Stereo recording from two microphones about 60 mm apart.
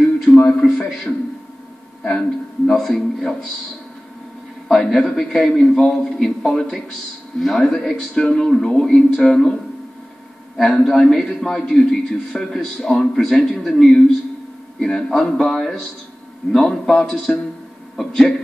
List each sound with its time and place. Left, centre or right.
0.4 s a sound: centre
2.0 s a man's voice: centre
4.6 s a man's voice: centre
10.6 s a man's voice: centre